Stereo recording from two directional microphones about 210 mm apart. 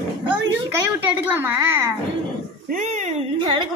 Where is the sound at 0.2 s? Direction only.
20° right (ahead or behind).